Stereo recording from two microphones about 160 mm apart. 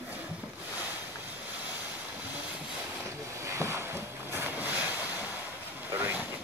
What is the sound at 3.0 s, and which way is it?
Boat, 15° right (ahead or behind).